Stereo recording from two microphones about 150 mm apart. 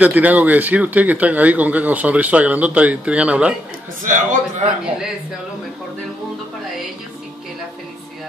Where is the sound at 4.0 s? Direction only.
60° right (ahead or behind).